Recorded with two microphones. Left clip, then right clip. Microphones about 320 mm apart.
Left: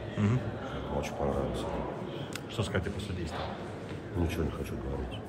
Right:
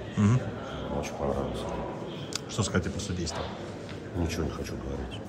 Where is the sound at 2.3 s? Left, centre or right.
Centre.